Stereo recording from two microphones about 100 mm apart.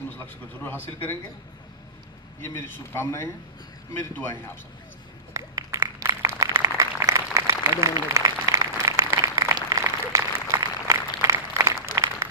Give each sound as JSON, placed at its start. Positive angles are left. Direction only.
{"t": 0.6, "sound": "speech", "side_deg": 20}
{"t": 2.4, "sound": "speech", "side_deg": 25}
{"t": 5.3, "sound": "a sound", "side_deg": -30}